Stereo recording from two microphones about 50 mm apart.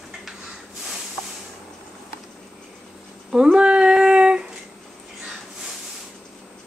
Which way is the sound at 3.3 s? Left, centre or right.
Centre.